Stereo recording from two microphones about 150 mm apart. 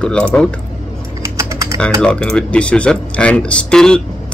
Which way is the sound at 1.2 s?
20° right (ahead or behind).